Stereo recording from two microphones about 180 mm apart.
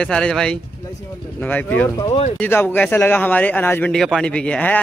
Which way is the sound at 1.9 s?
25° left (ahead or behind).